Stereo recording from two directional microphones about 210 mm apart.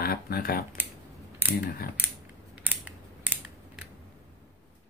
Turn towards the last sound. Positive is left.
turn(degrees=-5)  # may be behind; listen again after turning